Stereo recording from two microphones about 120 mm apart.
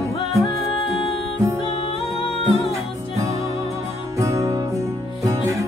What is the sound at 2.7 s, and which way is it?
Music, 25° right (ahead or behind).